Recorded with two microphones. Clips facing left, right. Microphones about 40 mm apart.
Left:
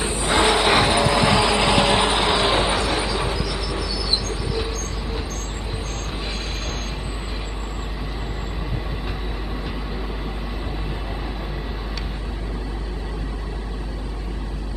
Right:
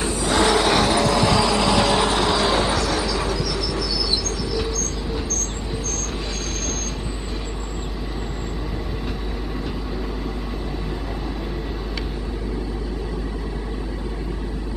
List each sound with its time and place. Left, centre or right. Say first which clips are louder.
0.0 s vehicle: even; left